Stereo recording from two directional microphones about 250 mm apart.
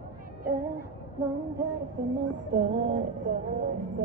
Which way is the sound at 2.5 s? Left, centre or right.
Right.